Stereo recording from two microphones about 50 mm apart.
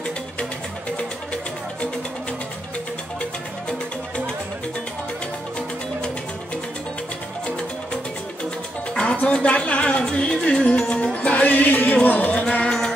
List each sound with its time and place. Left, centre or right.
0.9 s music: left
8.9 s speech: left
10.0 s music: centre
12.6 s music: centre